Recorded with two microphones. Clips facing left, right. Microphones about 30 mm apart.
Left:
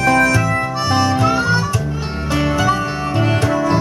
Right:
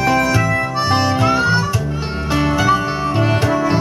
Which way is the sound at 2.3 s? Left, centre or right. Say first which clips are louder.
Right 1 dB; centre.